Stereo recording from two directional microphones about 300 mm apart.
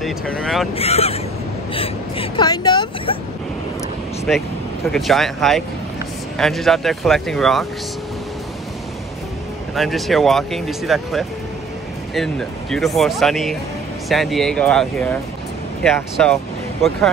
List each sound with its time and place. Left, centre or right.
0.0 s speech: centre
0.7 s speech: centre
1.7 s a sound: centre
4.3 s speech: centre
9.8 s speech: centre